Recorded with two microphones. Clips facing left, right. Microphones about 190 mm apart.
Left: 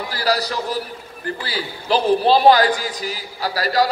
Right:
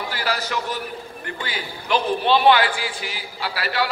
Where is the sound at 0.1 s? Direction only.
35° left (ahead or behind).